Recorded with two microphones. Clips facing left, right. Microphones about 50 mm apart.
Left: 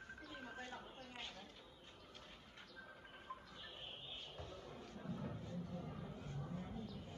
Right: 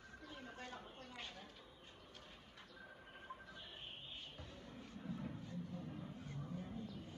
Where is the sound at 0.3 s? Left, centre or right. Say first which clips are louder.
Even; left.